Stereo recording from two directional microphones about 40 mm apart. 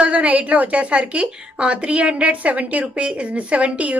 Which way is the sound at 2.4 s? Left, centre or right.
Right.